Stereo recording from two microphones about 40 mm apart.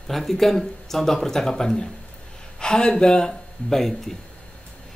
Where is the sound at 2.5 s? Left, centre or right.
Left.